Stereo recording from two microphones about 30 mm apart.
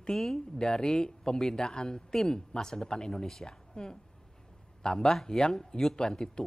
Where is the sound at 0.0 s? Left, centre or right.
Centre.